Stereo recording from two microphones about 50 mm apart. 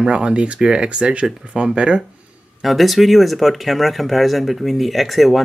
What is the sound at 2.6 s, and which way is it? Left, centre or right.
Speech, centre.